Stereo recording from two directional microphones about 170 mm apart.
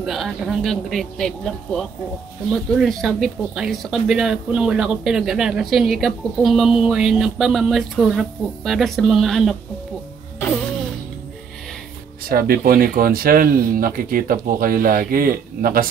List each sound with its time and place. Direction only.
0.0 s speech: centre (ahead or behind)
12.3 s speech: 60° right (ahead or behind)